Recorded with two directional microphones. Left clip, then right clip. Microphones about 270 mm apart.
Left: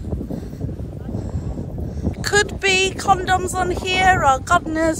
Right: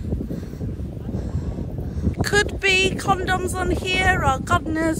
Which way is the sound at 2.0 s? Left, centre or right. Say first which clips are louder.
Left 2 dB; centre.